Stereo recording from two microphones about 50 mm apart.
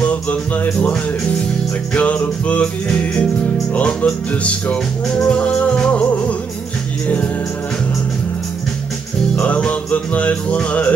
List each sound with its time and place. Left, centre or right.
0.0 s music: left
2.0 s music: left
3.7 s music: left
5.0 s music: centre
9.3 s music: left